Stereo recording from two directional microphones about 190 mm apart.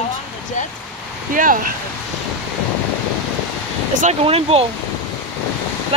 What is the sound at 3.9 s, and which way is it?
Speech, 40° right (ahead or behind).